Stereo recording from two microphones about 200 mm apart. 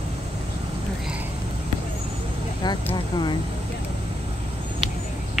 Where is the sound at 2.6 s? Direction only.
20° left (ahead or behind).